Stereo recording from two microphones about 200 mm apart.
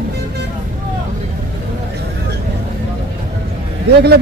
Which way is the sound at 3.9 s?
55° right (ahead or behind).